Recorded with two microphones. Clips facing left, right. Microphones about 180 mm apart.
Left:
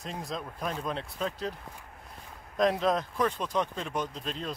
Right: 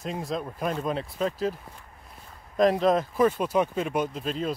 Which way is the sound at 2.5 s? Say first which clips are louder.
Right 5 dB; centre (ahead or behind).